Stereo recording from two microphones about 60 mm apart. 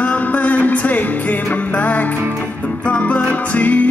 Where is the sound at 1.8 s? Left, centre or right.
Left.